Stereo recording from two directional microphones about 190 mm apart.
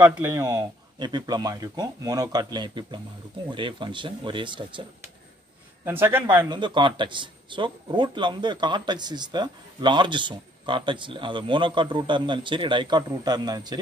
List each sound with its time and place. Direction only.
0.1 s speech: 15° right (ahead or behind)
5.9 s speech: 10° right (ahead or behind)
6.2 s speech: 25° right (ahead or behind)